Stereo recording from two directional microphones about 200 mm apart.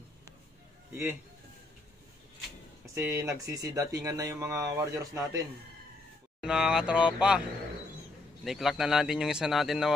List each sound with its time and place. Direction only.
2.9 s speech: 15° right (ahead or behind)
6.4 s speech: 5° right (ahead or behind)
8.5 s speech: centre (ahead or behind)